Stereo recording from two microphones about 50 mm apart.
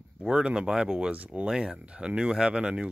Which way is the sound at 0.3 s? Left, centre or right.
Centre.